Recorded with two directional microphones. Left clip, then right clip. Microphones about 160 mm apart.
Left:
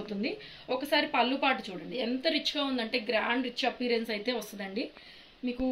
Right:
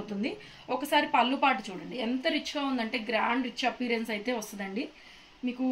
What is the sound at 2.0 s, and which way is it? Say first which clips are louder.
A woman's voice: even; 25° right (ahead or behind).